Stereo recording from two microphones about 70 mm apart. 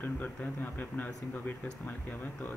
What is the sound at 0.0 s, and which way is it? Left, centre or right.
Speech, left.